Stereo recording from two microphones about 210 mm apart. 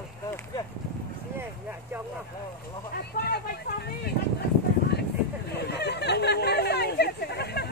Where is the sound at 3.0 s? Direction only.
50° left (ahead or behind).